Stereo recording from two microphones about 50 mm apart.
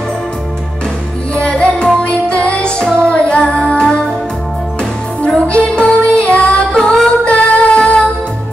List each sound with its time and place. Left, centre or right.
1.3 s music: left
5.2 s music: left
6.7 s music: centre; by 8.0 s left